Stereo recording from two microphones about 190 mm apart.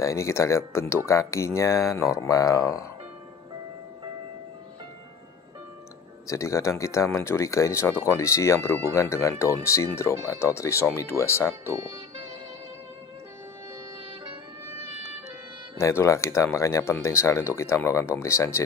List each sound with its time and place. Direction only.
0.0 s speech: 15° left (ahead or behind)
6.2 s speech: 15° left (ahead or behind)
11.6 s speech: 15° right (ahead or behind)
14.7 s music: 15° right (ahead or behind)
15.8 s speech: 15° left (ahead or behind)